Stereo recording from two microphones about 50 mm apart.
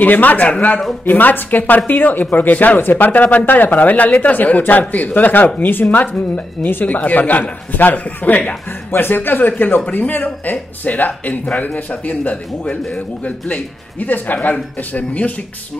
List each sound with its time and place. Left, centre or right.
0.0 s a man's voice: left
8.9 s a man's voice: left